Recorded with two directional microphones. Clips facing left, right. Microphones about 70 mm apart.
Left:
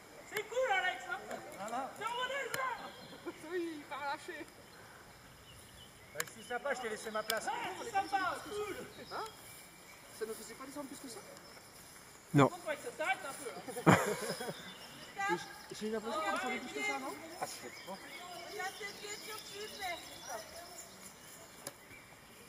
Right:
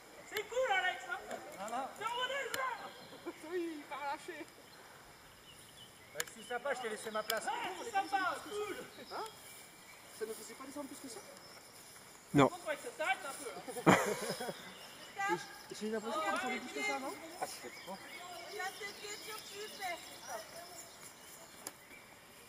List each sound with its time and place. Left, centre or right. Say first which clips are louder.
0.3 s chatter: left 1 dB; centre
3.5 s a sound: even; left
6.5 s speech: even; centre
12.4 s speech: even; centre
15.9 s speech: even; centre